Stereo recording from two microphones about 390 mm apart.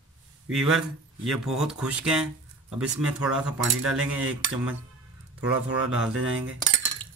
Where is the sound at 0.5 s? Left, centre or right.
Centre.